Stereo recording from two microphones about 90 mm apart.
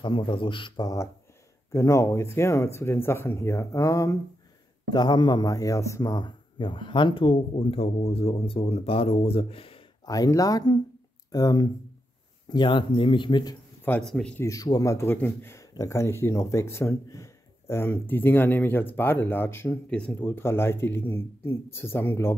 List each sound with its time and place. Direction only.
0.0 s speech: 75° left (ahead or behind)
1.7 s speech: 35° left (ahead or behind)
4.8 s a man's voice: 50° left (ahead or behind); by 6.1 s 35° left (ahead or behind)
6.1 s speech: 60° left (ahead or behind); by 9.8 s 90° left
10.0 s a man's voice: 45° left (ahead or behind)
12.4 s speech: 55° left (ahead or behind)
14.0 s speech: 5° left (ahead or behind)
14.4 s speech: 40° left (ahead or behind); by 15.6 s 25° left (ahead or behind)
15.7 s speech: 35° left (ahead or behind)
19.9 s speech: 15° left (ahead or behind)
20.2 s speech: 30° left (ahead or behind)